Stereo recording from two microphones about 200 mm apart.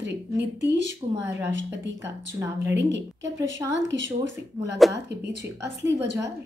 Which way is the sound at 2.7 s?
60° right (ahead or behind).